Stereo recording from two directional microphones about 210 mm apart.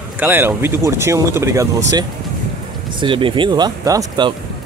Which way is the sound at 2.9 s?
25° right (ahead or behind).